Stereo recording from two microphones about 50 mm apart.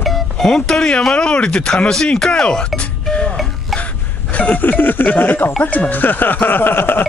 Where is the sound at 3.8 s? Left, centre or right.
Left.